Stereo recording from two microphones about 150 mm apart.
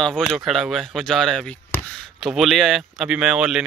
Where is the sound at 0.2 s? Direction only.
Centre (ahead or behind).